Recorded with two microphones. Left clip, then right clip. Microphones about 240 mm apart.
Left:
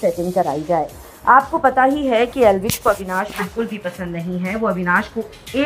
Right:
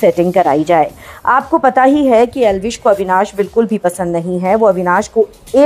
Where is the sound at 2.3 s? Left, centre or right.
Right.